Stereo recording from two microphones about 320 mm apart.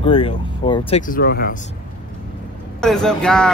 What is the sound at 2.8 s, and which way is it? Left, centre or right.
Speech, centre.